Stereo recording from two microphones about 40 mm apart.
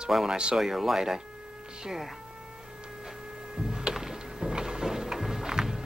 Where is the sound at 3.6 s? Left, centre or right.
Centre.